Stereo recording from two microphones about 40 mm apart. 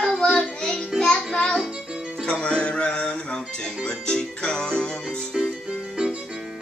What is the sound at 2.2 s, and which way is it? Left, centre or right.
Music, left.